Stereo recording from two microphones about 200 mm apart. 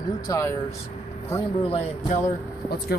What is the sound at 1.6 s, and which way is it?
Speech, 30° left (ahead or behind).